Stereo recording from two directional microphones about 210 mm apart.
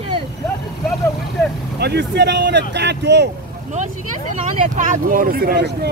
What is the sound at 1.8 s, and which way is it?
Speech, 50° right (ahead or behind).